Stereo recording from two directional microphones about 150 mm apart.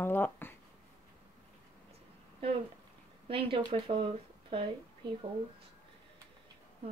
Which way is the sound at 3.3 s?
35° right (ahead or behind).